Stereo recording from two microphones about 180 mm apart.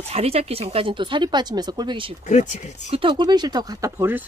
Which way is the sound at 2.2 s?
40° left (ahead or behind).